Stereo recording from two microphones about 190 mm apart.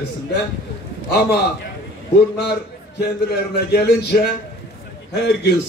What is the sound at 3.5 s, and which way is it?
A man's voice, 55° left (ahead or behind).